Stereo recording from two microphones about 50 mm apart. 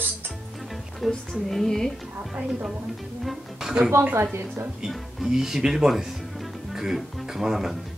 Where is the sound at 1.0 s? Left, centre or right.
Centre.